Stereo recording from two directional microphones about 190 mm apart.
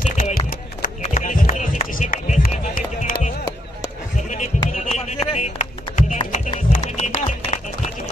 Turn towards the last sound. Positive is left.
turn(degrees=35)  # may be behind; listen again after turning